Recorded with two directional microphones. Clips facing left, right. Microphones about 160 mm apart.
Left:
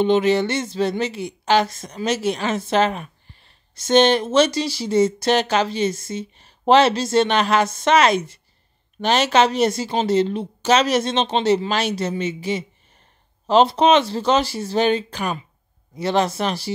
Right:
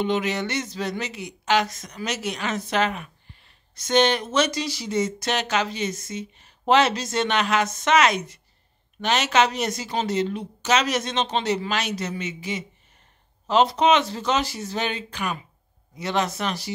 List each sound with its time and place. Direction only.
0.0 s speech: 30° left (ahead or behind)